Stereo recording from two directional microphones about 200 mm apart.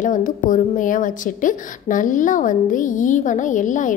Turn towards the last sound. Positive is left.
turn(degrees=40)  # may be behind; listen again after turning